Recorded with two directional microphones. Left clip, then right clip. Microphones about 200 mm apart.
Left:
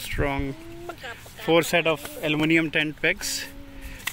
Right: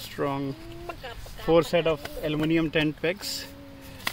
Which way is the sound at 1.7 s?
15° left (ahead or behind).